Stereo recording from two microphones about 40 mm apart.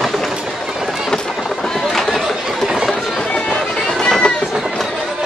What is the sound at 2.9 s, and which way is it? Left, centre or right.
Run, left.